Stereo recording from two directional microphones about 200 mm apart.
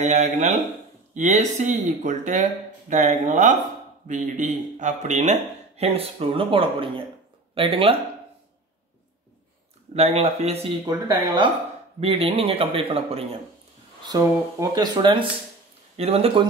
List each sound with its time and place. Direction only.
0.0 s a man's voice: 35° right (ahead or behind)
9.9 s speech: 30° right (ahead or behind)
11.1 s a man's voice: 20° right (ahead or behind)